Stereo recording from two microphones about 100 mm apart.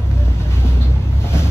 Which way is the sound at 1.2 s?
25° left (ahead or behind).